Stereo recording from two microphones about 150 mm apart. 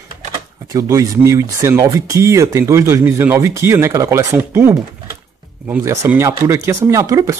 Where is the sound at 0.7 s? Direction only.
25° right (ahead or behind).